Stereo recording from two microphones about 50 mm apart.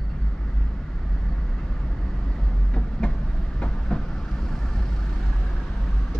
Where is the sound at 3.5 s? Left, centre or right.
Centre.